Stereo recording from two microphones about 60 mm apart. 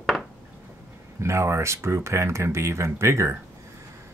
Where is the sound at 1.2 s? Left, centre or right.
Right.